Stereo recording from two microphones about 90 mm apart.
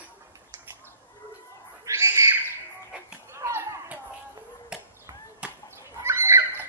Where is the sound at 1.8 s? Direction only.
35° right (ahead or behind).